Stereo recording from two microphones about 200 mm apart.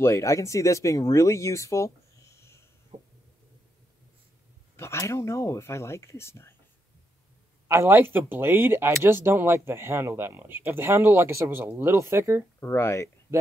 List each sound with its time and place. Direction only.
0.0 s speech: 15° left (ahead or behind)
2.9 s a sound: 30° right (ahead or behind)
4.7 s speech: 15° left (ahead or behind)
7.6 s speech: 15° right (ahead or behind)
12.5 s speech: 15° left (ahead or behind)